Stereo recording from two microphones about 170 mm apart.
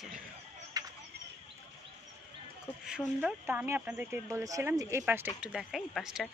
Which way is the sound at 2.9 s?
5° right (ahead or behind).